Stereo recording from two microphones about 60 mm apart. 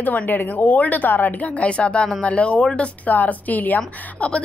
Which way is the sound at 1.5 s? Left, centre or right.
Centre.